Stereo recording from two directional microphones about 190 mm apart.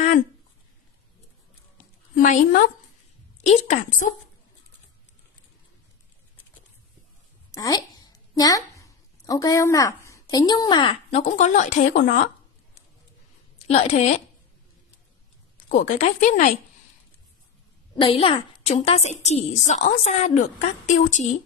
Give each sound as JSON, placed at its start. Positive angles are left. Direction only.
{"t": 2.2, "sound": "a woman's voice", "side_deg": 40}
{"t": 3.6, "sound": "a woman's voice", "side_deg": 40}
{"t": 7.5, "sound": "a woman's voice", "side_deg": 20}
{"t": 13.7, "sound": "a woman's voice", "side_deg": 35}
{"t": 15.7, "sound": "a woman's voice", "side_deg": 40}
{"t": 17.9, "sound": "a woman's voice", "side_deg": 30}